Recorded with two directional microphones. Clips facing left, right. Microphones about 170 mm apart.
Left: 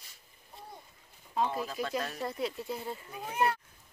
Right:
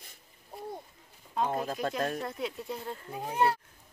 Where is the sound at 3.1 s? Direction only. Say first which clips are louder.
Right 3 dB; 30° right (ahead or behind).